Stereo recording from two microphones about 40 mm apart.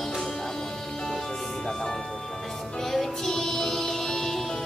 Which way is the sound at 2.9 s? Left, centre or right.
Centre.